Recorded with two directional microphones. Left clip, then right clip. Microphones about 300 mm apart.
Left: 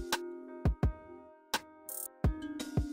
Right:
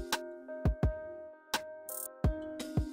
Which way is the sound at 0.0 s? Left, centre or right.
Centre.